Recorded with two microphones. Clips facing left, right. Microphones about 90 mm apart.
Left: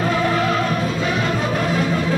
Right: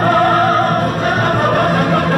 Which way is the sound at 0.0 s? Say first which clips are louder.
Right 7 dB; 55° right (ahead or behind).